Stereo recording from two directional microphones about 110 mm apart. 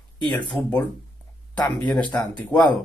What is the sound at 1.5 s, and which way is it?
Speech, 40° left (ahead or behind).